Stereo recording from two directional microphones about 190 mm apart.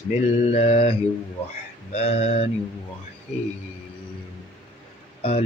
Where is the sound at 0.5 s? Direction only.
35° left (ahead or behind).